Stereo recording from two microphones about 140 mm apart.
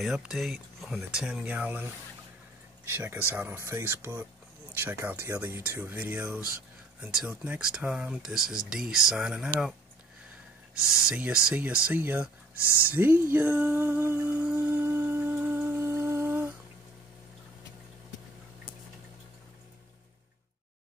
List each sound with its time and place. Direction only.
0.0 s speech: centre (ahead or behind)
2.9 s speech: 15° right (ahead or behind)
10.9 s speech: 5° right (ahead or behind)
12.9 s a sound: 15° right (ahead or behind)